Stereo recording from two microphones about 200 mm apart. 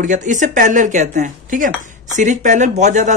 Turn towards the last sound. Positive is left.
turn(degrees=-35)  # may be behind; listen again after turning